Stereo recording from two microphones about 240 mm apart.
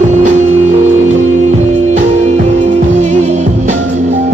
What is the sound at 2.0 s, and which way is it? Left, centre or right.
Music, right.